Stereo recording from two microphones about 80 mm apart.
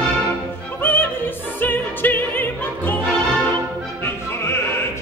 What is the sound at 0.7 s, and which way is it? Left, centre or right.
Opera, left.